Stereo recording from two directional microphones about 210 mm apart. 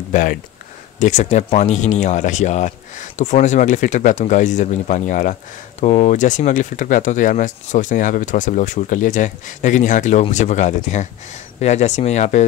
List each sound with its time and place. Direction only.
0.1 s speech: 40° left (ahead or behind)